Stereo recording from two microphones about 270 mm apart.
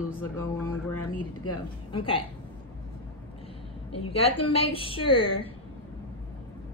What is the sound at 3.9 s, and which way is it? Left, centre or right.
Speech, left.